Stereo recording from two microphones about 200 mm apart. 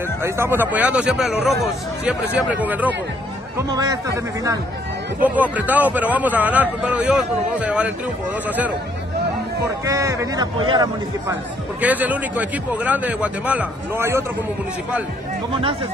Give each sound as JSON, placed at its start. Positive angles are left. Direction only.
{"t": 0.2, "sound": "speech", "side_deg": -10}
{"t": 5.2, "sound": "speech", "side_deg": -10}
{"t": 9.8, "sound": "speech", "side_deg": -15}
{"t": 11.8, "sound": "speech", "side_deg": -10}